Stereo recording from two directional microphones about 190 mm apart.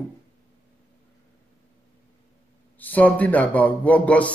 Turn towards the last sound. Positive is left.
turn(degrees=5)  # may be behind; listen again after turning